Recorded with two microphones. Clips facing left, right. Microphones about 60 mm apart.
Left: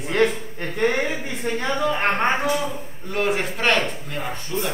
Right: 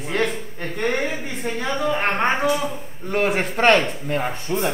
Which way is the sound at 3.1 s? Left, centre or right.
Right.